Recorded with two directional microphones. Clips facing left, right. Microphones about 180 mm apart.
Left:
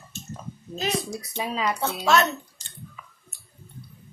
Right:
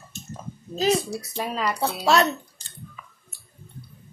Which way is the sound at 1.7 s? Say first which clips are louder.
Right 2 dB; 35° right (ahead or behind).